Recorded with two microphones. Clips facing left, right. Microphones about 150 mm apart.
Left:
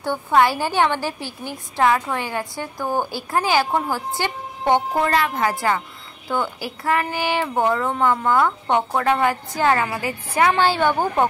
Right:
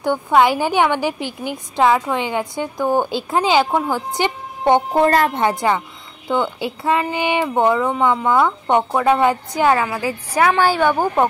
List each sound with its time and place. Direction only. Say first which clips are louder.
0.0 s a woman's voice: right 3 dB; 15° right (ahead or behind)
4.9 s a woman's voice: right 5 dB; 40° right (ahead or behind)
5.3 s a woman's voice: right 3 dB; 25° right (ahead or behind)